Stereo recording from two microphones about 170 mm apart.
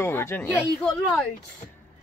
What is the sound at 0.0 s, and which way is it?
Speech, 15° left (ahead or behind).